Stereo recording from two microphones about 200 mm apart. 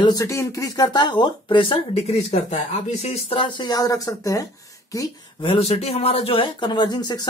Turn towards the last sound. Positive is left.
turn(degrees=20)  # may be behind; listen again after turning